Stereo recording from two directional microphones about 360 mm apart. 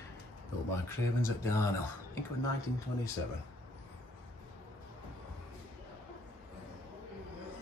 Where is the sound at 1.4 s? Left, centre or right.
Centre.